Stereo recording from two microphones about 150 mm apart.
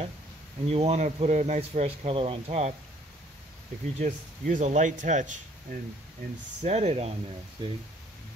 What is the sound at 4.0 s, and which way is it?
Speech, 55° right (ahead or behind).